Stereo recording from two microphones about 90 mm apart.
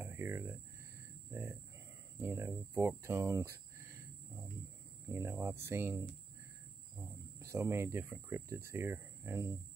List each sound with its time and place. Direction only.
0.0 s speech: 25° right (ahead or behind)
5.0 s speech: 30° right (ahead or behind)